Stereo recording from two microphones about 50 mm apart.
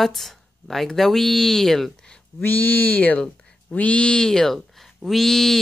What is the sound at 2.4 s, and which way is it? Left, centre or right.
Speech, left.